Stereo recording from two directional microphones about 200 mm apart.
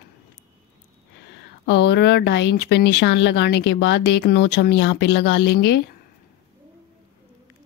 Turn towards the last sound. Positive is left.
turn(degrees=55)  # may be behind; listen again after turning